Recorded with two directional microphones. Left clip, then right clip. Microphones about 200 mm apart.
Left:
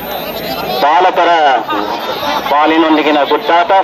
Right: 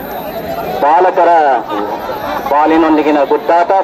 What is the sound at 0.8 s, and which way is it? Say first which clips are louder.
Speech: even; 50° right (ahead or behind).